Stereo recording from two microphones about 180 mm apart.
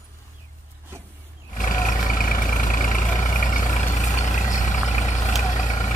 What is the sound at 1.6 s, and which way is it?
Vehicle, 45° left (ahead or behind).